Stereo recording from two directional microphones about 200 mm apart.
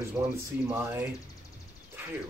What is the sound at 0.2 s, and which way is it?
Speech, 15° right (ahead or behind).